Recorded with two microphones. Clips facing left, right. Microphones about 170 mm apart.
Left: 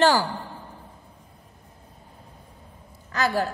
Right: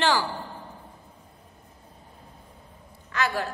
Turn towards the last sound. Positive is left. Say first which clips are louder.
# left 3 dB
turn(degrees=40)  # may be behind; listen again after turning